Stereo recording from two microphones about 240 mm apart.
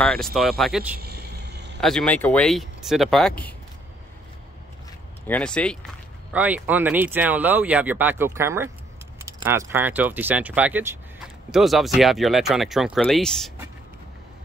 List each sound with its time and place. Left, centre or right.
0.0 s speech: centre
0.9 s vehicle: right
1.8 s speech: centre
5.2 s speech: centre
6.3 s speech: centre